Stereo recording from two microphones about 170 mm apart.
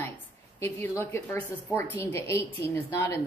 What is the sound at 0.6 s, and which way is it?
Speech, 15° left (ahead or behind).